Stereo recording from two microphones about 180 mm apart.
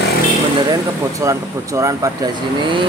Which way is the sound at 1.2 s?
15° right (ahead or behind).